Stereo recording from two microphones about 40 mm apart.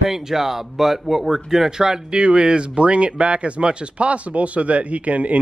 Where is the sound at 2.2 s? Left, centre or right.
Right.